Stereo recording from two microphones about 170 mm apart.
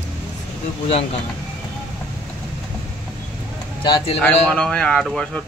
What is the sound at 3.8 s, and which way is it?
Speech, 25° left (ahead or behind).